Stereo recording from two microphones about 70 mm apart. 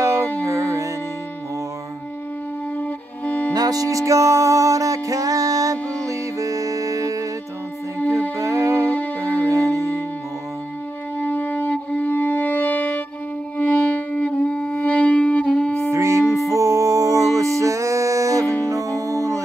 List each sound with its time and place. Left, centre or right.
0.5 s music: right
3.3 s music: left
3.5 s music: right
8.4 s music: right
11.2 s music: left
15.9 s music: right
16.4 s music: right